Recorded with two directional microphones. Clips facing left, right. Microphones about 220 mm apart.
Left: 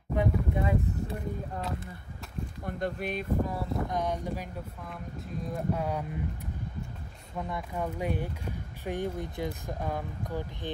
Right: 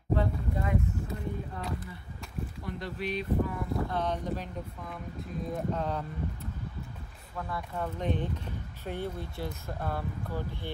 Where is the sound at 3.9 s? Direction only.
10° left (ahead or behind).